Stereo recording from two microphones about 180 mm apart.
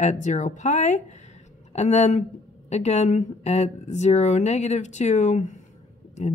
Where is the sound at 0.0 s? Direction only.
40° left (ahead or behind).